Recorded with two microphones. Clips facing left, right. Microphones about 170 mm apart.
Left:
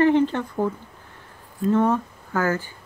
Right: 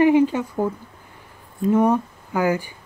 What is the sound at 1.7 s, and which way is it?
Speech, 15° right (ahead or behind).